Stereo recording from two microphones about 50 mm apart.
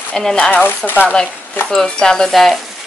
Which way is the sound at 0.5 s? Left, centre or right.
Left.